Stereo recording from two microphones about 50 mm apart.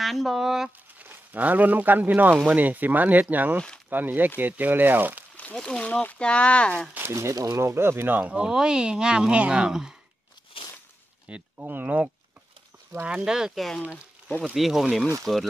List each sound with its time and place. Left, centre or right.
0.0 s speech: centre
0.9 s speech: right
5.6 s speech: centre
7.1 s speech: right
8.2 s speech: right
11.2 s a sound: right
11.6 s speech: right
13.0 s speech: centre
14.5 s speech: centre